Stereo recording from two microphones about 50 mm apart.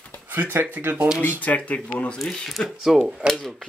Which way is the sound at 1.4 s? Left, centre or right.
Left.